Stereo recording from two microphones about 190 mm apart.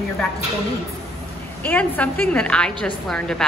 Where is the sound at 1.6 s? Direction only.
10° left (ahead or behind).